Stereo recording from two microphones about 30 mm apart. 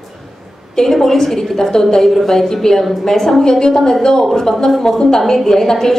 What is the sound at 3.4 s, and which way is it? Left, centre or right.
A woman's voice, left.